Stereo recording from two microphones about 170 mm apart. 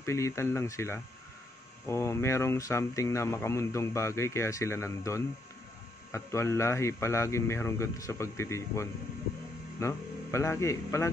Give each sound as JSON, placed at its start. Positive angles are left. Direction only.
{"t": 0.0, "sound": "speech", "side_deg": 15}